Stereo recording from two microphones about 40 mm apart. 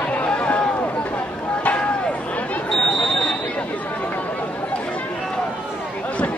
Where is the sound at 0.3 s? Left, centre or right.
Left.